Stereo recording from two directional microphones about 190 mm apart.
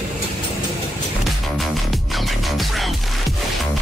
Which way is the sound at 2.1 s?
Centre (ahead or behind).